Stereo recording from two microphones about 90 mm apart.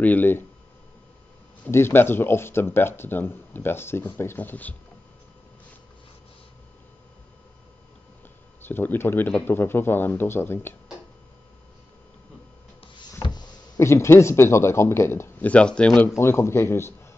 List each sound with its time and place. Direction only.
0.0 s speech: 20° left (ahead or behind)
1.7 s speech: 25° left (ahead or behind)
8.6 s speech: 25° left (ahead or behind)
13.2 s a sound: 55° left (ahead or behind)
13.7 s speech: 30° left (ahead or behind)
15.4 s speech: 15° left (ahead or behind)
16.2 s speech: 30° left (ahead or behind)